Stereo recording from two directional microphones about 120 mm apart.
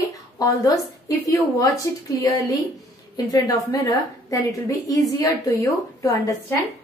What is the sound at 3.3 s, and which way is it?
A woman's voice, 30° left (ahead or behind).